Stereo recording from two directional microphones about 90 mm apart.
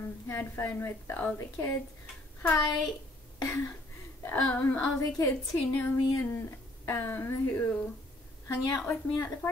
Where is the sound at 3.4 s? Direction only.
35° left (ahead or behind).